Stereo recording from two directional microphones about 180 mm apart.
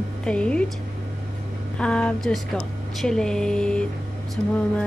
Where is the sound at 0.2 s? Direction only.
5° left (ahead or behind).